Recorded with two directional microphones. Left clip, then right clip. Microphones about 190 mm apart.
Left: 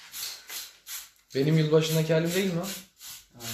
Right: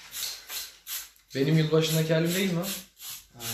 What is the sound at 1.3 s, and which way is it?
Speech, 45° left (ahead or behind).